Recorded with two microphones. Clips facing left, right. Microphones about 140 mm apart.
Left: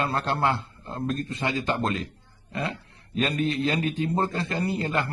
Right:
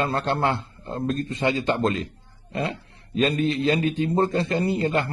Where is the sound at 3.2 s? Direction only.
30° right (ahead or behind).